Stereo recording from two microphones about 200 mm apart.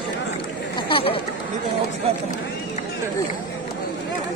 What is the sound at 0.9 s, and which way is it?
Chatter, 30° left (ahead or behind).